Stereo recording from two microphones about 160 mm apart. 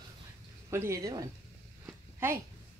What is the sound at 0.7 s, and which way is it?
Speech, 15° right (ahead or behind).